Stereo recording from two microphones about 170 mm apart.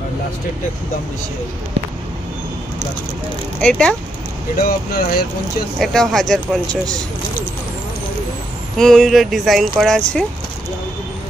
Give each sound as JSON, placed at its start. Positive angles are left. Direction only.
{"t": 3.6, "sound": "speech", "side_deg": 5}
{"t": 4.6, "sound": "speech", "side_deg": 60}
{"t": 5.8, "sound": "speech", "side_deg": 0}
{"t": 8.7, "sound": "speech", "side_deg": 0}